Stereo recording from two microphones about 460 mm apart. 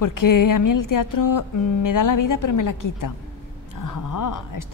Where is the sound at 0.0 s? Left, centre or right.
Left.